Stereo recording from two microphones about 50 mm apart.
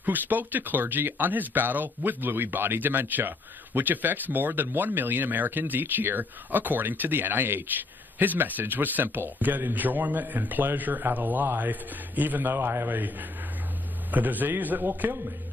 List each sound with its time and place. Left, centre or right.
0.0 s speech: right
12.5 s a man's voice: right